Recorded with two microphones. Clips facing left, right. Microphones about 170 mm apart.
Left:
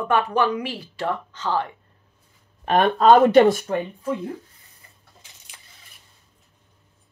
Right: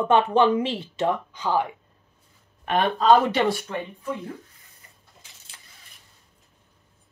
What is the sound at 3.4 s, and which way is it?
Speech, 40° left (ahead or behind).